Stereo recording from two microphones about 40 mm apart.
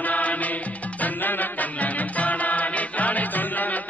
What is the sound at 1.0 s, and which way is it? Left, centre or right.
Music, left.